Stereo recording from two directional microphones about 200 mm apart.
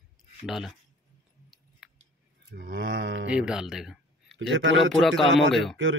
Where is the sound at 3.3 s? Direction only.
5° right (ahead or behind).